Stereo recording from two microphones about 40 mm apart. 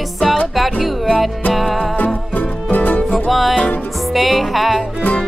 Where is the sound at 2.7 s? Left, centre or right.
Left.